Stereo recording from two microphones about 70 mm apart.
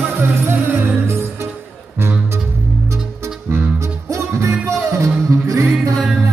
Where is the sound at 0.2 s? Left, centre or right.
Right.